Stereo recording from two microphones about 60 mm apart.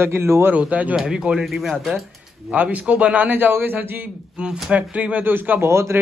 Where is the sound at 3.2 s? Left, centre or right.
Right.